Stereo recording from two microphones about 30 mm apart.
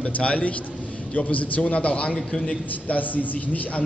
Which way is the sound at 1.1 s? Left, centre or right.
Left.